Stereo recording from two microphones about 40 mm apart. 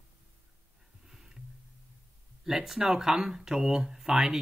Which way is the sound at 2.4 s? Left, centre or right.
Centre.